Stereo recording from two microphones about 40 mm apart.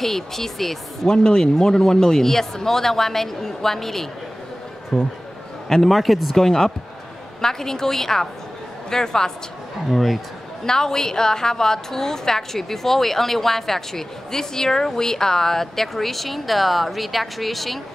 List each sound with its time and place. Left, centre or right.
0.0 s a woman's voice: centre
1.0 s a woman's voice: left
9.8 s speech: centre
10.6 s a woman's voice: centre